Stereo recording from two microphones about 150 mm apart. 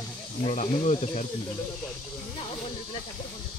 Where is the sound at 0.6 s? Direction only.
50° left (ahead or behind).